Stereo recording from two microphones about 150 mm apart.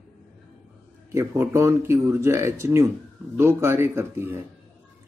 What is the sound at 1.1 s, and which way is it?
Speech, 20° right (ahead or behind).